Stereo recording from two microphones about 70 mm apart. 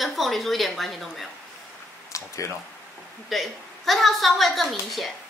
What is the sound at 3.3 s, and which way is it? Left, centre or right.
A woman's voice, centre.